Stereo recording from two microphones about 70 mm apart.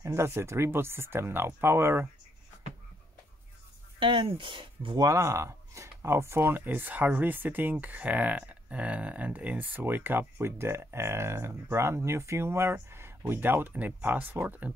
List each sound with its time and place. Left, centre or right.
0.0 s speech: right
4.9 s speech: right